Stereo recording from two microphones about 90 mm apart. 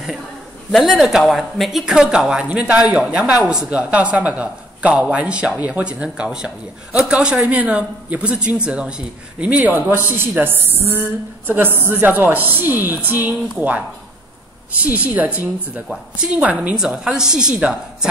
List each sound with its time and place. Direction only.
0.7 s a woman's voice: centre (ahead or behind)